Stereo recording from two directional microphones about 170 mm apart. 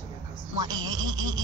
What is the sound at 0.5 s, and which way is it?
Speech, 25° right (ahead or behind).